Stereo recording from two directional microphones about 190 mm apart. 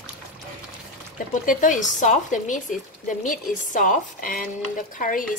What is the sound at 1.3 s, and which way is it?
Speech, 45° left (ahead or behind).